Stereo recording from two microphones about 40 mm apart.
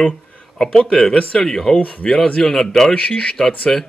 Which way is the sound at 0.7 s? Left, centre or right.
Left.